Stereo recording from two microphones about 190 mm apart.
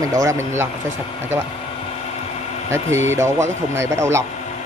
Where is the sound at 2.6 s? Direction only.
15° right (ahead or behind).